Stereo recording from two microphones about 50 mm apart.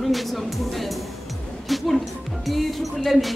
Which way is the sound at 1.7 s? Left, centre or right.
Centre.